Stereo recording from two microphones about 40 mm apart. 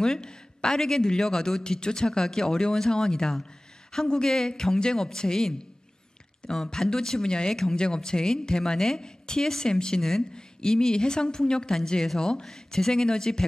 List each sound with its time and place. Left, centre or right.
0.0 s speech: centre
6.5 s speech: centre